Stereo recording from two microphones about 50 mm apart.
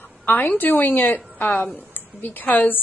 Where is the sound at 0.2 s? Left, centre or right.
Left.